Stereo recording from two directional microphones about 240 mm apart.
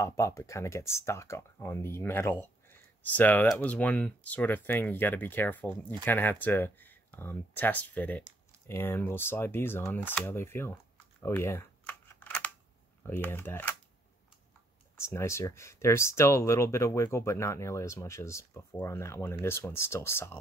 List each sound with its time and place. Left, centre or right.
0.0 s speech: centre
15.0 s speech: centre